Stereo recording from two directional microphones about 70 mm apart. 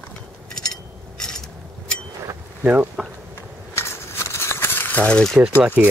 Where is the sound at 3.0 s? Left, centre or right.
Centre.